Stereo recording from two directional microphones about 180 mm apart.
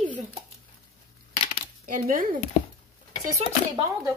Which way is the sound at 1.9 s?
50° right (ahead or behind).